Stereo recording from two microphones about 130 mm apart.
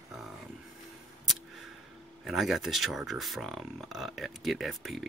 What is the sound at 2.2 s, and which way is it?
Speech, centre (ahead or behind).